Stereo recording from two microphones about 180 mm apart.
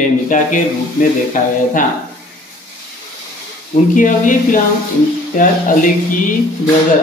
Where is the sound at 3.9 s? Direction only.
45° left (ahead or behind).